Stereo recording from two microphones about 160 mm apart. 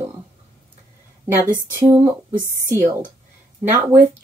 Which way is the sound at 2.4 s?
15° left (ahead or behind).